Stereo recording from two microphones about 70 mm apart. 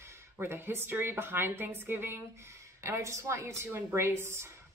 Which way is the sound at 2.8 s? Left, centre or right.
Right.